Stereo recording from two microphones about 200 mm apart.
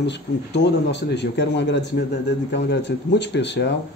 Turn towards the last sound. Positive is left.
turn(degrees=60)  # may be behind; listen again after turning